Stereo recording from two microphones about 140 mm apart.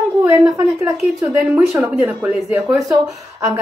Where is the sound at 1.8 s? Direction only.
10° right (ahead or behind).